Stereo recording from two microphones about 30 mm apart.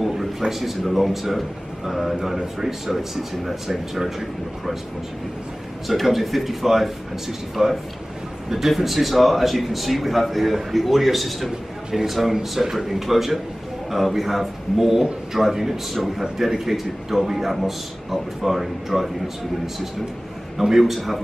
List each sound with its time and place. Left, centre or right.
0.0 s a man's voice: centre
5.9 s a man's voice: centre
12.4 s speech: centre
12.7 s a man's voice: centre